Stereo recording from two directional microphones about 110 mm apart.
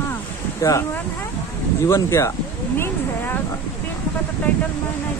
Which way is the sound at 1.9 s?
25° left (ahead or behind).